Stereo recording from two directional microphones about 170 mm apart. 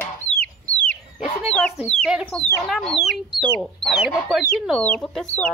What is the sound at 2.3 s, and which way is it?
Speech, 5° left (ahead or behind).